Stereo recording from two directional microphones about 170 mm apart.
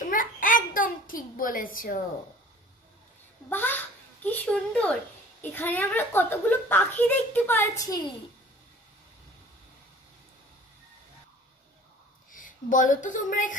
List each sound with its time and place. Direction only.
0.0 s a sound: 55° left (ahead or behind)
3.4 s a child's voice: 10° left (ahead or behind)
12.3 s speech: 50° left (ahead or behind)